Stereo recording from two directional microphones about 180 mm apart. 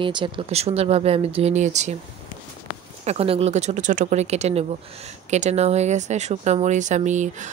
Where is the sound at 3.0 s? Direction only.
35° right (ahead or behind).